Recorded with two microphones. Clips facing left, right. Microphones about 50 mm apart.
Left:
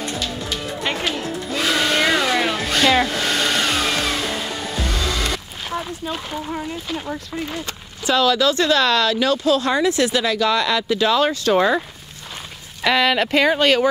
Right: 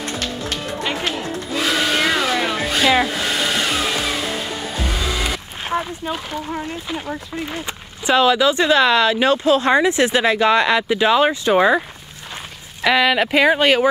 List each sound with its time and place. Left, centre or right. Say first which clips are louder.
1.5 s hair dryer: even; centre
6.1 s speech: right 1 dB; centre
7.5 s speech: right 1 dB; right
12.8 s speech: right 2 dB; centre